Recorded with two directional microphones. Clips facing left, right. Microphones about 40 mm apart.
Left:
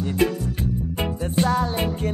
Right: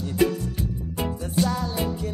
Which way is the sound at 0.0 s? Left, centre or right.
Left.